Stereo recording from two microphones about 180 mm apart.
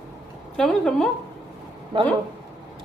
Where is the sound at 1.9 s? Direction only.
25° right (ahead or behind).